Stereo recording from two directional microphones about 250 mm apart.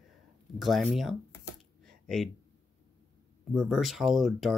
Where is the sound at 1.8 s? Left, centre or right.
Centre.